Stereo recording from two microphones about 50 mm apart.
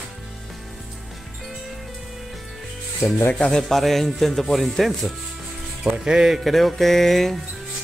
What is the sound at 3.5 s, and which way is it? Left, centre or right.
Speech, centre.